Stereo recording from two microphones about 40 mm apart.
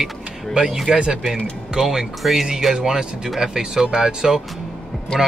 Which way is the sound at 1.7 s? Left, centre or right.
Centre.